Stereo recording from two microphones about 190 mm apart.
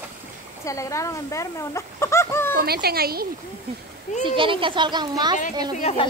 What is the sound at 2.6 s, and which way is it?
Speech, 55° right (ahead or behind).